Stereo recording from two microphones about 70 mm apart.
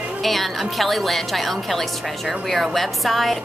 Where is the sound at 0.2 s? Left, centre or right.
Centre.